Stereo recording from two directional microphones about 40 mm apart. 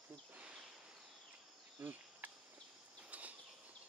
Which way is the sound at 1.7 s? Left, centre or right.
Right.